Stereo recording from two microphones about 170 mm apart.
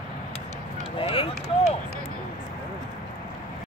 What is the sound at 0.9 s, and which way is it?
Run, 30° left (ahead or behind).